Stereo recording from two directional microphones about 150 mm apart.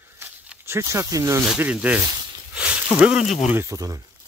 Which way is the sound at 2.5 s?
10° right (ahead or behind).